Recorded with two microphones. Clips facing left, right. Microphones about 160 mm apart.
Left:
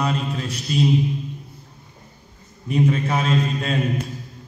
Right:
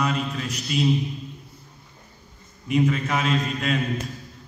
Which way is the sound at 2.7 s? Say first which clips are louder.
Left 2 dB; 35° left (ahead or behind).